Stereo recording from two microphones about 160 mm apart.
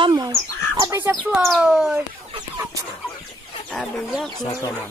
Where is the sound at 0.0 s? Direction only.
25° right (ahead or behind).